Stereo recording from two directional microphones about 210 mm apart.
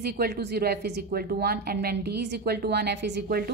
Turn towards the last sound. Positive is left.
turn(degrees=-50)  # may be behind; listen again after turning